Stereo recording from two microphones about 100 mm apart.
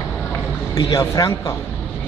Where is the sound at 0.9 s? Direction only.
35° left (ahead or behind).